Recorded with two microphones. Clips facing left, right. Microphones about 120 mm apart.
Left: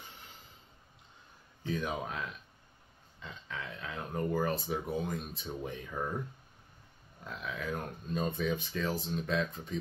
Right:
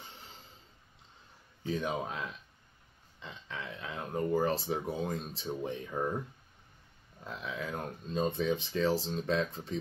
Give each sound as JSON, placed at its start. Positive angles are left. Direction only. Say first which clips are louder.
{"t": 1.7, "sound": "speech", "louder": "right 1 dB", "side_deg": -25}
{"t": 3.2, "sound": "speech", "louder": "even", "side_deg": -25}
{"t": 7.2, "sound": "speech", "louder": "even", "side_deg": -25}